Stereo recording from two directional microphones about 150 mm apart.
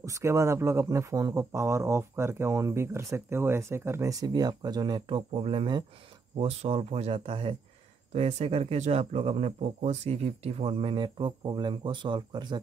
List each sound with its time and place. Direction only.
0.0 s speech: 20° right (ahead or behind)
5.1 s speech: 40° right (ahead or behind)